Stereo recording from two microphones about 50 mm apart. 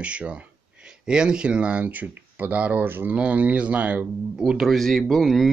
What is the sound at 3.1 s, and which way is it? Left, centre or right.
Speech, right.